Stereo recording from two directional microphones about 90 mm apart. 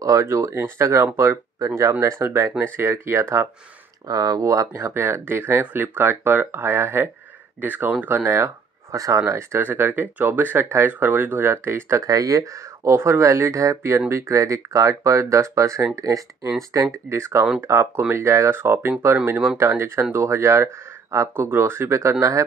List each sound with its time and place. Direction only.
0.0 s speech: 35° right (ahead or behind)
4.1 s speech: 40° right (ahead or behind); by 8.3 s 20° right (ahead or behind)
8.9 s speech: 35° right (ahead or behind)
12.1 s speech: 40° right (ahead or behind)